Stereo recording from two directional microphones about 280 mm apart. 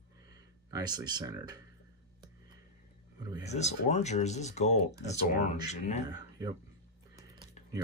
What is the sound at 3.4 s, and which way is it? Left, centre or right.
Speech, left.